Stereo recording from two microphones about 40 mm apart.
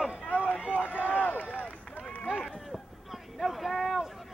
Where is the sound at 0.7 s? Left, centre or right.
Left.